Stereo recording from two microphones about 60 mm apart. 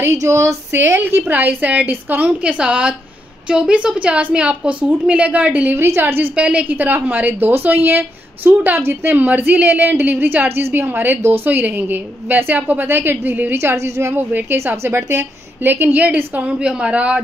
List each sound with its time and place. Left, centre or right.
0.0 s speech: right
1.2 s a woman's voice: right
2.4 s a woman's voice: centre
5.8 s speech: right
6.3 s a woman's voice: right
14.1 s a woman's voice: right; by 17.2 s centre